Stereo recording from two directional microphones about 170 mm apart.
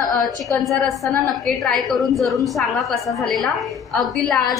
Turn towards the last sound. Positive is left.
turn(degrees=0)  # may be behind; listen again after turning